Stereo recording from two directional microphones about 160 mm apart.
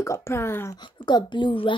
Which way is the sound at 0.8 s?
30° left (ahead or behind).